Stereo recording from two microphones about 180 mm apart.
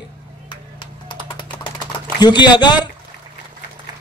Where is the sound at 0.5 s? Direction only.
25° left (ahead or behind).